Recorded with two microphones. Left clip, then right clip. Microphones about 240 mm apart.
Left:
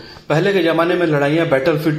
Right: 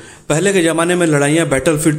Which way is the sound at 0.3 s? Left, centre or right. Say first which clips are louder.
Right 1 dB; right.